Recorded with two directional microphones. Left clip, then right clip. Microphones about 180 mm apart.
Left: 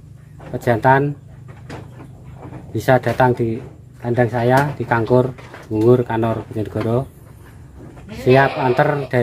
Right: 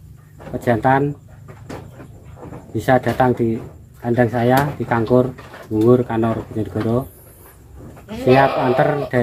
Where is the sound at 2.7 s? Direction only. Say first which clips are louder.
Left 1 dB; 25° left (ahead or behind).